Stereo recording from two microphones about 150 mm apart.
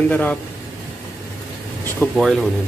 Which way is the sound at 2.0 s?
15° left (ahead or behind).